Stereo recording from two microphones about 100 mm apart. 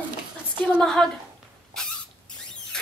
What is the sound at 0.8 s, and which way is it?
Speech, 5° left (ahead or behind).